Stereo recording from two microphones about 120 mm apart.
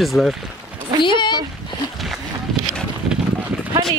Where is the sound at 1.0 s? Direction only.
40° left (ahead or behind).